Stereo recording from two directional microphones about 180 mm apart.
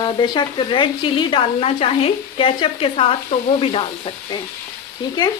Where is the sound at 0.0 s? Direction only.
25° left (ahead or behind).